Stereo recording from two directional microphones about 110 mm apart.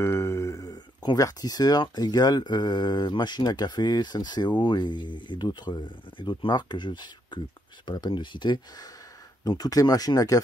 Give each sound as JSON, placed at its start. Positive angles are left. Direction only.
{"t": 0.0, "sound": "speech", "side_deg": 25}